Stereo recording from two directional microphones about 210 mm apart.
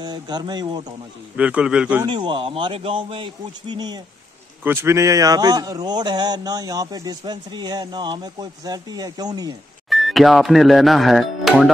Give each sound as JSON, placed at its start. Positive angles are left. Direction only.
{"t": 0.0, "sound": "a man's voice", "side_deg": -20}
{"t": 1.3, "sound": "a man's voice", "side_deg": -5}
{"t": 2.0, "sound": "a man's voice", "side_deg": -20}
{"t": 9.8, "sound": "speech", "side_deg": 0}